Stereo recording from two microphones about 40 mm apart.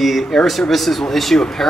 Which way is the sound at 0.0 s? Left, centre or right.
Centre.